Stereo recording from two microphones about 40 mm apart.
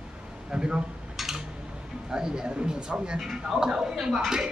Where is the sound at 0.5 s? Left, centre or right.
Right.